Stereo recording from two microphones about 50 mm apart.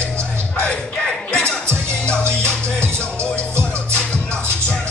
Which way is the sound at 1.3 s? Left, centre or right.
Left.